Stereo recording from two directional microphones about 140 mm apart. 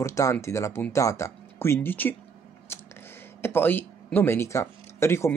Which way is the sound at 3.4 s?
15° left (ahead or behind).